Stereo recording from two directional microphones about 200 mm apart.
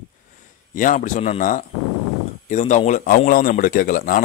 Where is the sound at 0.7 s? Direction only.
40° left (ahead or behind).